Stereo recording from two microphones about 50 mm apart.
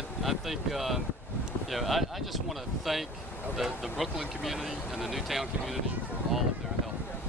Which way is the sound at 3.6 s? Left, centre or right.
Centre.